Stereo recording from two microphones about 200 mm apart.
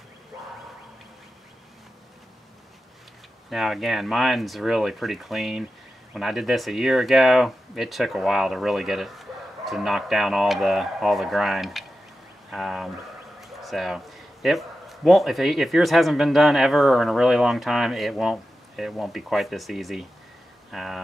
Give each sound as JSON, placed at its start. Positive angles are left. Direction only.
{"t": 3.4, "sound": "speech", "side_deg": 0}